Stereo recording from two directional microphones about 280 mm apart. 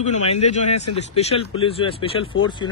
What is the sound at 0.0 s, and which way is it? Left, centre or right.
A man's voice, left.